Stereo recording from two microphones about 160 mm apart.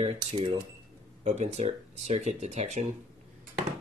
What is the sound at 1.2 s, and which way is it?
Speech, 45° right (ahead or behind).